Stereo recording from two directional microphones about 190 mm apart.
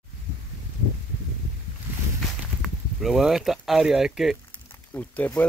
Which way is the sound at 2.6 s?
Centre (ahead or behind).